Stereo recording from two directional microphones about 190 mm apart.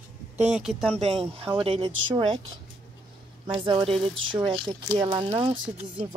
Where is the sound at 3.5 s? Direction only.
25° right (ahead or behind).